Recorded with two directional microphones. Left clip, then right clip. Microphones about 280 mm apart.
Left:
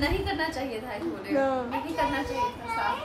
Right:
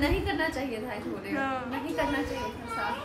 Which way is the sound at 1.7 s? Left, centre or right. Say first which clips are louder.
Left 2 dB; centre.